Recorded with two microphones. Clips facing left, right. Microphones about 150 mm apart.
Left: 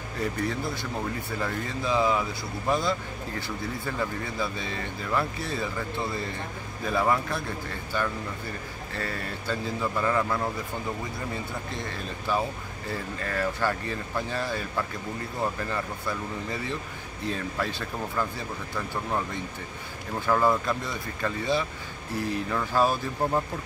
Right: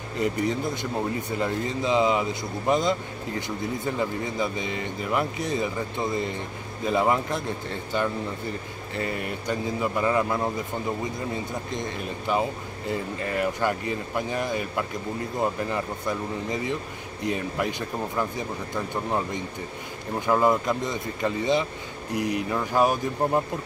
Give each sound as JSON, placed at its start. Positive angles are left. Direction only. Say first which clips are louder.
{"t": 0.2, "sound": "speech", "louder": "right 4 dB", "side_deg": -20}
{"t": 11.7, "sound": "speech", "louder": "right 4 dB", "side_deg": -20}